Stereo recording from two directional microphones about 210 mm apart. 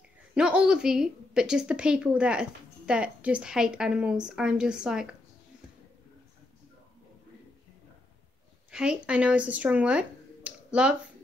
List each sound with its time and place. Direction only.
0.3 s a woman's voice: 5° right (ahead or behind)
8.7 s speech: 5° right (ahead or behind)